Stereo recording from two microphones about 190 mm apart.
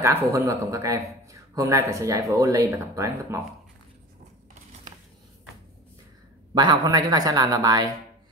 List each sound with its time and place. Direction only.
0.0 s a man's voice: 15° right (ahead or behind)
6.5 s speech: 20° right (ahead or behind)